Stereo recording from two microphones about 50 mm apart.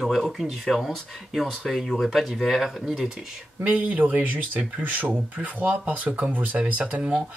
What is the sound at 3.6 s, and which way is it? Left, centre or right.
Speech, right.